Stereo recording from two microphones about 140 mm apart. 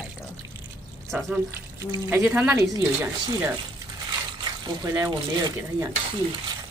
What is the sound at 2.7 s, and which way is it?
Speech, 20° right (ahead or behind).